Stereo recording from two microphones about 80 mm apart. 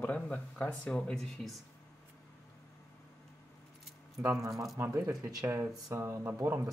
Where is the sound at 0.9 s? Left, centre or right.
Centre.